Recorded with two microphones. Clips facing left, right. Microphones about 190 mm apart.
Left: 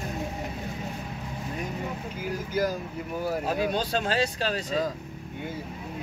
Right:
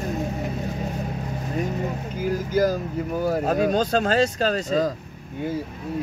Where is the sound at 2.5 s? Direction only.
45° right (ahead or behind).